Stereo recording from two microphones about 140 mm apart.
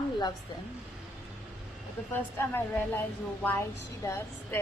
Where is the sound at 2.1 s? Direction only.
15° left (ahead or behind).